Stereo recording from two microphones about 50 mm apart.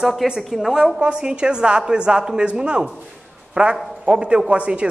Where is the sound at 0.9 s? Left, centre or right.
Centre.